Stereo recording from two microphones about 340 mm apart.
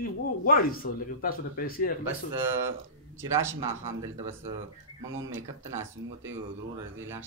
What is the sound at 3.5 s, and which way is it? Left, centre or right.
Speech, right.